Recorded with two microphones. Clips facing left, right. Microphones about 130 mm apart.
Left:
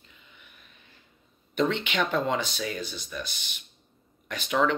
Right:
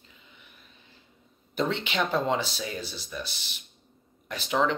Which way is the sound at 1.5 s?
35° right (ahead or behind).